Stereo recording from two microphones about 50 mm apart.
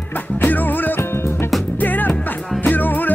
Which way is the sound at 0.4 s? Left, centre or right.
Left.